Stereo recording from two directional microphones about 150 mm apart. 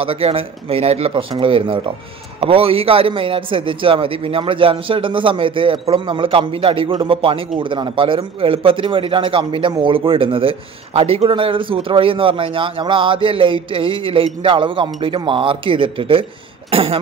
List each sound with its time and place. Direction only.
0.0 s a man's voice: 40° right (ahead or behind)